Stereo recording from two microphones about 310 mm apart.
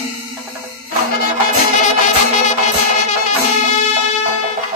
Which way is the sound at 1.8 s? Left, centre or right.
Left.